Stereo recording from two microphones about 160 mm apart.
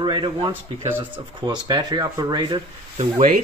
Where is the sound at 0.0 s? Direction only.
30° right (ahead or behind).